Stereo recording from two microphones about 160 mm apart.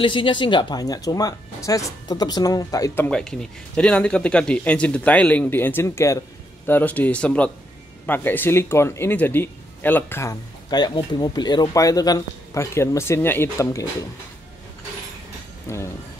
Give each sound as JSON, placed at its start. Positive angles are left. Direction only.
{"t": 0.0, "sound": "speech", "side_deg": 30}
{"t": 10.7, "sound": "speech", "side_deg": 25}
{"t": 15.7, "sound": "speech", "side_deg": 15}